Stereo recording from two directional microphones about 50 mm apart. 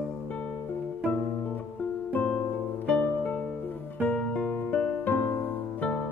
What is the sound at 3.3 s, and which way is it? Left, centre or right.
Music, centre.